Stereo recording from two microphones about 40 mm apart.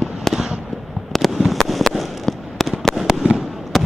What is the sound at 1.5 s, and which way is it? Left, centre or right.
Fireworks, centre.